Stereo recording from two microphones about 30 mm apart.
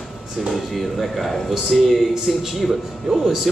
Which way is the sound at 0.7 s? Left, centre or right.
Centre.